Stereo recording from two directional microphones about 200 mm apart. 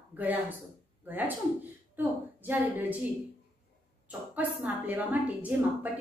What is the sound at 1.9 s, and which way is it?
A woman's voice, 10° right (ahead or behind).